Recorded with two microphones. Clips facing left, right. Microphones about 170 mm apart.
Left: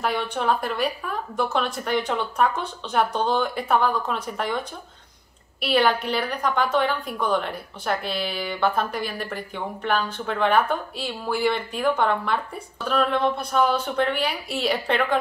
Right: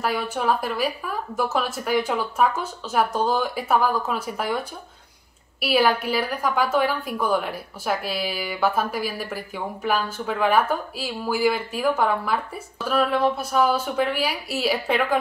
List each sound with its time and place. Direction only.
0.0 s a woman's voice: 5° right (ahead or behind)